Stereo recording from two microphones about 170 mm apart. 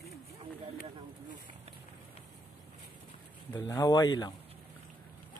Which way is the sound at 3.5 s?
20° left (ahead or behind).